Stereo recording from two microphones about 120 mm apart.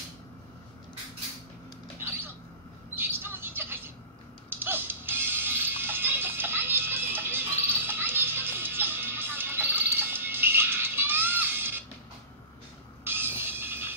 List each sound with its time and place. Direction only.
3.0 s a sound: 20° right (ahead or behind)
4.5 s music: 20° right (ahead or behind)
13.0 s train: 20° right (ahead or behind)